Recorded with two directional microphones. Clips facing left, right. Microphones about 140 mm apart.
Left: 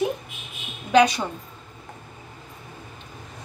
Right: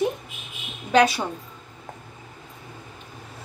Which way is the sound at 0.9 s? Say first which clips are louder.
Left 1 dB; 5° right (ahead or behind).